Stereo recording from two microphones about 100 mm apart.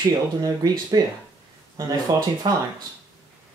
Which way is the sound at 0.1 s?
40° right (ahead or behind).